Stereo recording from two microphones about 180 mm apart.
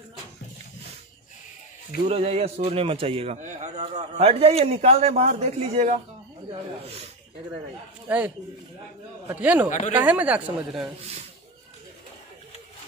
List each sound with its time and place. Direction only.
2.0 s a man's voice: 35° right (ahead or behind)
9.3 s speech: 10° right (ahead or behind)
9.7 s speech: 40° left (ahead or behind)
10.0 s speech: 10° right (ahead or behind)